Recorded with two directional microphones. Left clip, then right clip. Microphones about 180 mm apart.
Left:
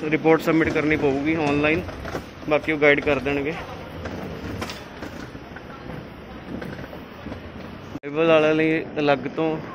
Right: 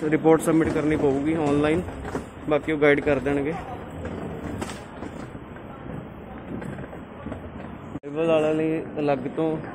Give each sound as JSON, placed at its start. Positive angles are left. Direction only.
{"t": 0.0, "sound": "speech", "side_deg": -15}
{"t": 0.3, "sound": "speech", "side_deg": -5}
{"t": 8.2, "sound": "a man's voice", "side_deg": 15}